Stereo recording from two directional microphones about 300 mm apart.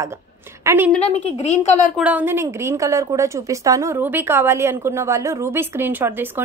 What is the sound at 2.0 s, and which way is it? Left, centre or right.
A woman's voice, centre.